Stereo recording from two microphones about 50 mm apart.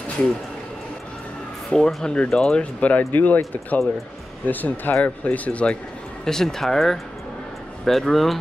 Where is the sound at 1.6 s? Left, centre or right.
Centre.